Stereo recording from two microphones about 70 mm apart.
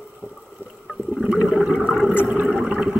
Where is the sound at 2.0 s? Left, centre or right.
Centre.